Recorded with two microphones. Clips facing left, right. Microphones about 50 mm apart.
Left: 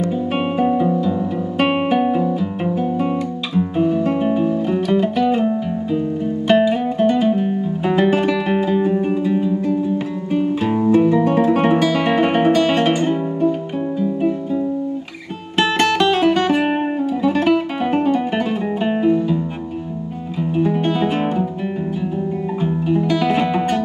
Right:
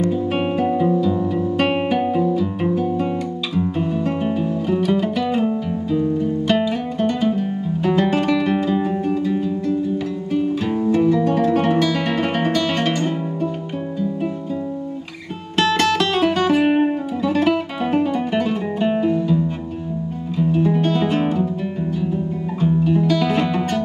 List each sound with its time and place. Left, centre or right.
0.6 s music: centre
2.6 s music: centre
3.5 s guitar: centre
4.8 s music: centre
10.3 s guitar: left
15.5 s music: centre
22.6 s music: centre